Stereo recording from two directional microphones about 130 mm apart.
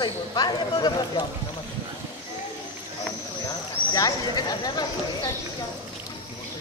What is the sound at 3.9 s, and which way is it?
Speech, 30° left (ahead or behind).